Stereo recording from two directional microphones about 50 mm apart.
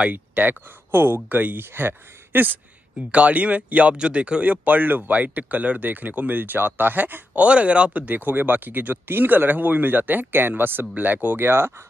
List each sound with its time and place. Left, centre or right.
0.1 s speech: right
3.0 s speech: right
7.4 s speech: right